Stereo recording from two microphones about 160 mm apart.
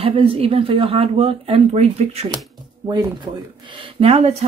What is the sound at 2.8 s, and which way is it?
Speech, 30° right (ahead or behind).